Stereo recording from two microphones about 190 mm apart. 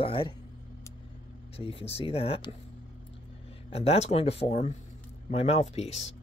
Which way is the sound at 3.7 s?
30° left (ahead or behind).